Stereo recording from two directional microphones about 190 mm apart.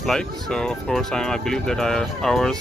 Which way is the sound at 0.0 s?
5° left (ahead or behind).